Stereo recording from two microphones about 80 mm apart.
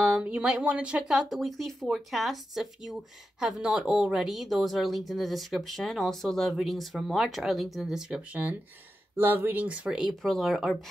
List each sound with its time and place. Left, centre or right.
0.0 s speech: centre
1.3 s speech: centre
9.1 s speech: right
9.8 s speech: centre